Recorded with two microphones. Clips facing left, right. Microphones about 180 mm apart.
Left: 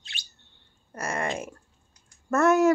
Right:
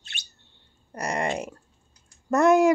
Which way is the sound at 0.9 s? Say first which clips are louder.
Right 2 dB; 15° right (ahead or behind).